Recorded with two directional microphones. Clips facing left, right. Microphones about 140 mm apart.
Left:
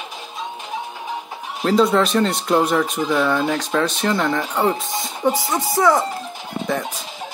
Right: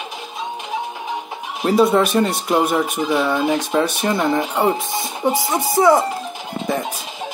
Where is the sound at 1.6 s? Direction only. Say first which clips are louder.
Right 1 dB; 15° right (ahead or behind).